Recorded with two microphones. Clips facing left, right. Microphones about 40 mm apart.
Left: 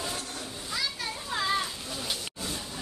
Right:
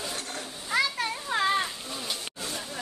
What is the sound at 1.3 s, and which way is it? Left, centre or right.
Children playing, right.